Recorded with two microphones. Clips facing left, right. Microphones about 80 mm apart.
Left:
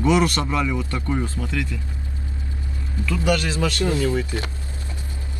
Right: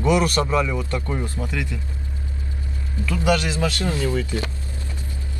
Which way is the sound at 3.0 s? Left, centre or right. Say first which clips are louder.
Right 1 dB; right.